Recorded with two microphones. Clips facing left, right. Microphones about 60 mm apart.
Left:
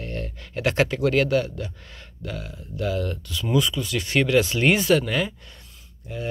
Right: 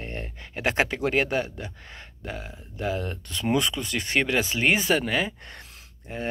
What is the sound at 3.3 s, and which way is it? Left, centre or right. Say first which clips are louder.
Speech: left 1 dB; right.